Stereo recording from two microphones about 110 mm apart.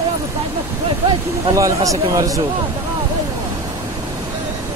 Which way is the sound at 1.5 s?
30° right (ahead or behind).